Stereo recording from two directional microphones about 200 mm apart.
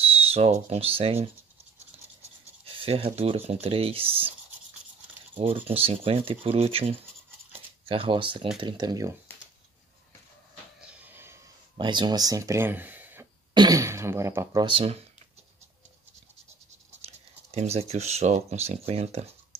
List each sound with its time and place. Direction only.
0.0 s speech: 30° right (ahead or behind)
2.6 s speech: 25° right (ahead or behind)
5.4 s speech: 30° right (ahead or behind)
10.9 s a sound: 10° right (ahead or behind)
11.7 s speech: 25° right (ahead or behind)
17.0 s speech: 30° right (ahead or behind)